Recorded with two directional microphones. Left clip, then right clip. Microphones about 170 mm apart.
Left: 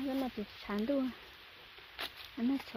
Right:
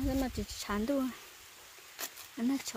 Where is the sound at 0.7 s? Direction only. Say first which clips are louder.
Right 1 dB; 20° right (ahead or behind).